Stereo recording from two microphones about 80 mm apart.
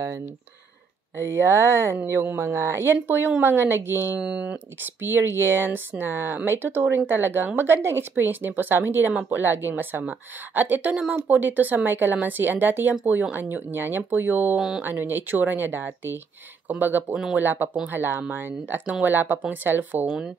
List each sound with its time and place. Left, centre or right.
1.1 s a woman's voice: right
4.2 s speech: centre
5.0 s a woman's voice: right